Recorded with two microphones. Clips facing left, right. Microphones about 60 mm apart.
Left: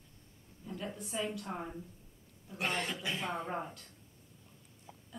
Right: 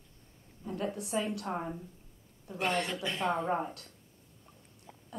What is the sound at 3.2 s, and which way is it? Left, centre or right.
Speech, right.